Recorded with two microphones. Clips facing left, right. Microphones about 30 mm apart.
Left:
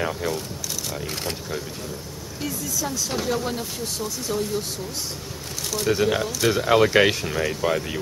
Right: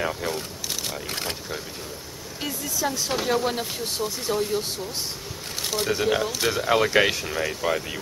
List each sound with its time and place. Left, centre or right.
0.0 s speech: centre
2.4 s speech: right
5.6 s a sound: right
5.9 s speech: centre